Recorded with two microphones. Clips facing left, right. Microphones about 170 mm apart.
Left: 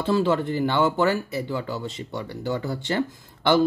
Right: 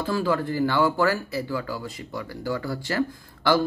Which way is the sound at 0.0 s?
25° left (ahead or behind).